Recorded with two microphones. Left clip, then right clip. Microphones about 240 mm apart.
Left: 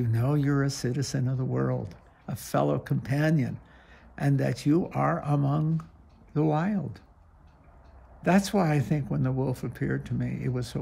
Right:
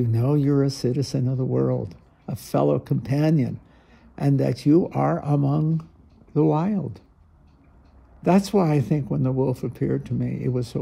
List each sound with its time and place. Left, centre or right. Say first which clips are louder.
0.0 s speech: right 6 dB; centre
8.2 s speech: right 5 dB; centre